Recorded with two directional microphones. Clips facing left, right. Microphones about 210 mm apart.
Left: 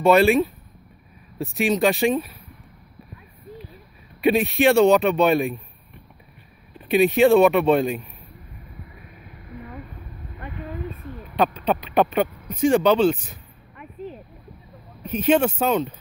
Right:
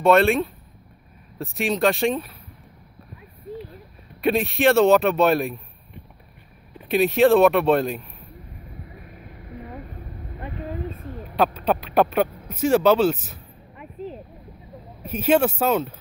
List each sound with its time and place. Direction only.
0.0 s speech: centre (ahead or behind)
4.2 s speech: centre (ahead or behind)
6.9 s speech: centre (ahead or behind)
9.6 s vehicle: 35° right (ahead or behind)
10.4 s a sound: 30° right (ahead or behind)
11.1 s a sound: 45° right (ahead or behind)
11.3 s speech: 5° right (ahead or behind)
15.0 s speech: 5° right (ahead or behind)